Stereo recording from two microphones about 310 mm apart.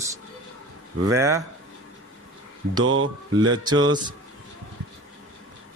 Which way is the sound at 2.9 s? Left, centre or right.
Right.